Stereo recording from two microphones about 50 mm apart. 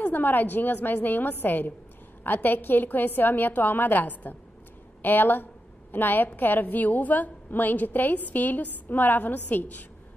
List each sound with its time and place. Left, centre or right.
0.0 s a woman's voice: left